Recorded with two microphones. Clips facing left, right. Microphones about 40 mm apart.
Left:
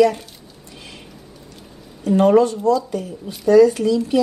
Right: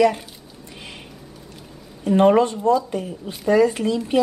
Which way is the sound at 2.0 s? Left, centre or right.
Right.